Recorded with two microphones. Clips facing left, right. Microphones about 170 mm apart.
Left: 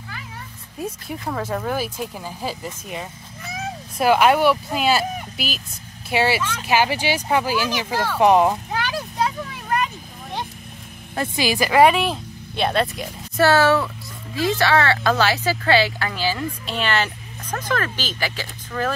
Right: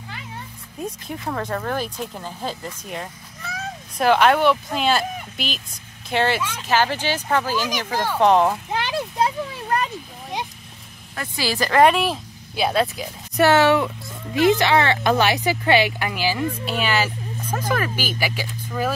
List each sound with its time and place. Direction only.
0.7 s speech: 5° left (ahead or behind)
8.7 s a sound: 20° right (ahead or behind)
11.1 s speech: 15° left (ahead or behind); by 13.1 s centre (ahead or behind)
13.4 s a woman's voice: 20° right (ahead or behind)